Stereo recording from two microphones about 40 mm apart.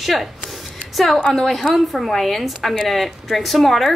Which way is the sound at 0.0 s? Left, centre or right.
Centre.